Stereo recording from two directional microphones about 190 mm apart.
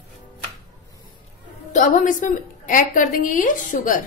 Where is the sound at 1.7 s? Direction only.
40° left (ahead or behind).